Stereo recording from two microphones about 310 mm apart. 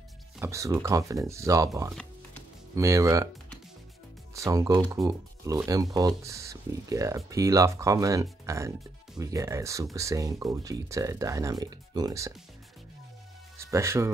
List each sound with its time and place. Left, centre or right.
0.4 s speech: centre
4.3 s speech: centre
13.6 s speech: centre